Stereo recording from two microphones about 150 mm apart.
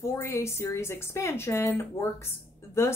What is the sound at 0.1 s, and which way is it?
A woman's voice, 20° left (ahead or behind).